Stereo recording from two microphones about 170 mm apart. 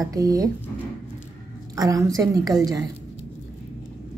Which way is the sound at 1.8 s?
20° right (ahead or behind).